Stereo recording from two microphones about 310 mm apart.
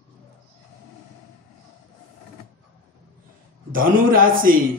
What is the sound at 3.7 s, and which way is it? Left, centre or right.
Speech, right.